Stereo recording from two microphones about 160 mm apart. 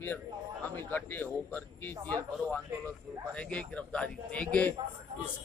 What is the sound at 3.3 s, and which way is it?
Speech, 5° left (ahead or behind).